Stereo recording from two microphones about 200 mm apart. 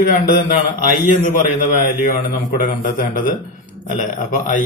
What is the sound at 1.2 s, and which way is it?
A man's voice, 40° left (ahead or behind).